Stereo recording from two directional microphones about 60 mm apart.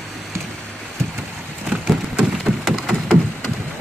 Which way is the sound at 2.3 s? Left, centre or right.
Centre.